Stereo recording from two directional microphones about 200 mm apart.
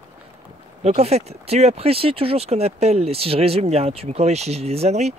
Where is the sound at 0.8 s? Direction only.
30° right (ahead or behind).